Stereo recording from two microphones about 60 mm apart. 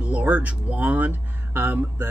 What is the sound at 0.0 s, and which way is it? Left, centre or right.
Speech, right.